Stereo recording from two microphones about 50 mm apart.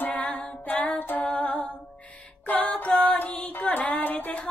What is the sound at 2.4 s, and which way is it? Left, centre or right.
Female singing, left.